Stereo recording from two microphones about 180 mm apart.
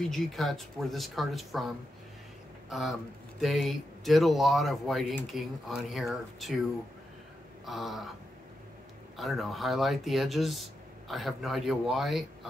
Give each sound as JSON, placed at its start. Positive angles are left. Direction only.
{"t": 0.0, "sound": "speech", "side_deg": 0}
{"t": 2.7, "sound": "speech", "side_deg": 0}
{"t": 7.6, "sound": "speech", "side_deg": 0}
{"t": 9.1, "sound": "speech", "side_deg": 0}